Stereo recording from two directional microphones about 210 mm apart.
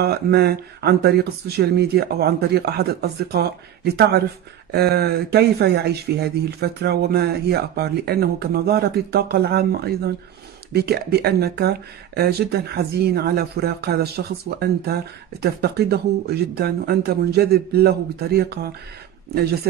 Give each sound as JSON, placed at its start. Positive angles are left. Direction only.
{"t": 0.0, "sound": "speech", "side_deg": -50}
{"t": 15.4, "sound": "speech", "side_deg": -50}